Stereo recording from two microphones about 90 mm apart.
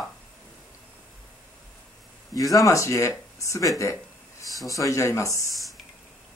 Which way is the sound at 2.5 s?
35° left (ahead or behind).